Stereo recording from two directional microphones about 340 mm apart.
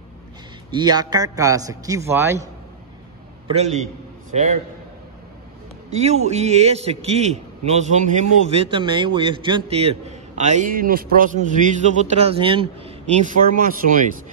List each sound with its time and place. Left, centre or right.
0.7 s a man's voice: centre
3.4 s a man's voice: centre
6.2 s a man's voice: centre